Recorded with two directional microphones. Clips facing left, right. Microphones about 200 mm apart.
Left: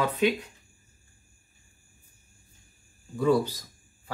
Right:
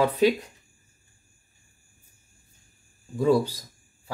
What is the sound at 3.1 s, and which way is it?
Speech, 30° right (ahead or behind).